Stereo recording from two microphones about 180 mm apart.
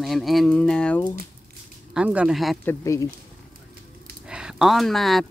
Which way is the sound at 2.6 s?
15° left (ahead or behind).